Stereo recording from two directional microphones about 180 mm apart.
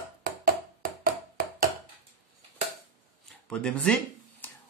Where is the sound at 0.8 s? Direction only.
50° right (ahead or behind).